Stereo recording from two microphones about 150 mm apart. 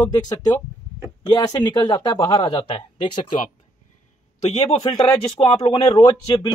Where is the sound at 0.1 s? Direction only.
25° left (ahead or behind).